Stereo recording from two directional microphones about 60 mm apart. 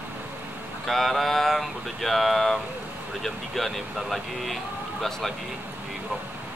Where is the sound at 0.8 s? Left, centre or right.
Centre.